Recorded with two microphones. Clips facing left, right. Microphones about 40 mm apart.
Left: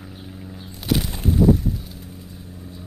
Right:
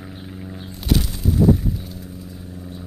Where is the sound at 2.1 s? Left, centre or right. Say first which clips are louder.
Right 4 dB; centre.